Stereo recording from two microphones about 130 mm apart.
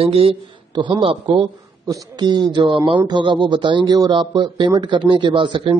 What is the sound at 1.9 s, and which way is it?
Speech, 30° right (ahead or behind).